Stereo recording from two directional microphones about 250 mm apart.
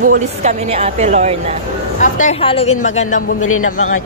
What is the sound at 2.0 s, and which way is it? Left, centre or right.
A woman's voice, left.